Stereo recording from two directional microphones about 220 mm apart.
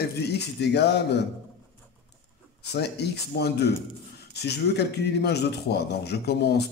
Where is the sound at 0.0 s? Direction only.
50° left (ahead or behind).